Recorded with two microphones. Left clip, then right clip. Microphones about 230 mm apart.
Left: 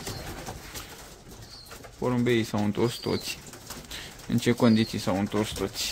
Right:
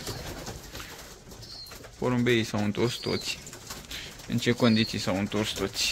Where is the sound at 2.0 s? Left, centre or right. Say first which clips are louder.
Even; centre.